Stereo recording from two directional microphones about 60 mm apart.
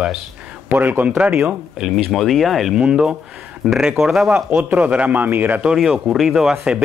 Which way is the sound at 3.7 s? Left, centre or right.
Centre.